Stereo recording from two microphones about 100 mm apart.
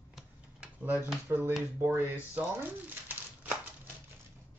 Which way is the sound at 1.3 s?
20° right (ahead or behind).